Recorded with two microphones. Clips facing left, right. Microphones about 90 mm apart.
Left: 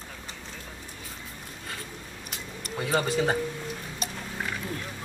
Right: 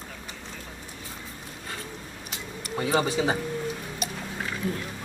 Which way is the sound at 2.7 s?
5° right (ahead or behind).